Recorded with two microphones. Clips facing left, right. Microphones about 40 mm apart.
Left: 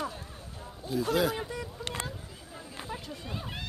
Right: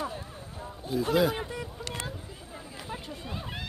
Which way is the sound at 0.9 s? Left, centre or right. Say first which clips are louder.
Right 2 dB; centre.